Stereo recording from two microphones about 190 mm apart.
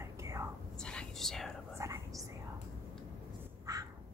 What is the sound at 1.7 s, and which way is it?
Whispering, 15° right (ahead or behind).